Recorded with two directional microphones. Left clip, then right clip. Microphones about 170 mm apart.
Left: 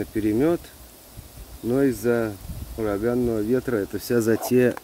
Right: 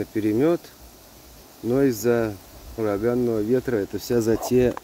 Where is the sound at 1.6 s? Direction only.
5° right (ahead or behind).